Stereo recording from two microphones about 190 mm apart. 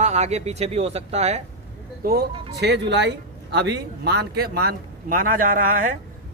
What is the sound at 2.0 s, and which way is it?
Speech, 55° right (ahead or behind).